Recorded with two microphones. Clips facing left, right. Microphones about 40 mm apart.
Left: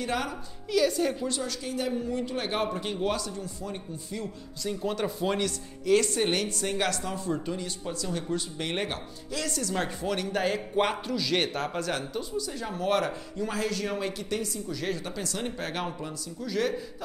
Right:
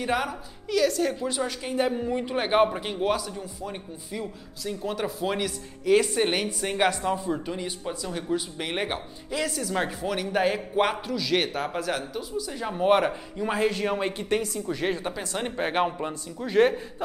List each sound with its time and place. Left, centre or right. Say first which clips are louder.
0.0 s speech: right 4 dB; centre
0.7 s a woman's voice: right 1 dB; centre
1.4 s speech: right 5 dB; right
2.9 s speech: right 3 dB; centre
4.6 s speech: even; centre
12.4 s speech: right 9 dB; centre; by 16.8 s right